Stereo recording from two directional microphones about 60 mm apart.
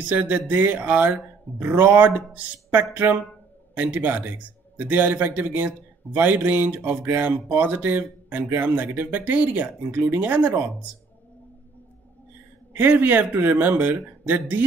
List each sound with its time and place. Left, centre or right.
0.1 s a man's voice: right
12.7 s a man's voice: right